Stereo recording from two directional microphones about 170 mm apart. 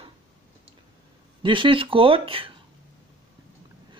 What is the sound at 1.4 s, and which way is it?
Speech, 30° right (ahead or behind).